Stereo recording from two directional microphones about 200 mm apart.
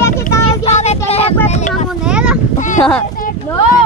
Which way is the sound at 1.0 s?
30° left (ahead or behind).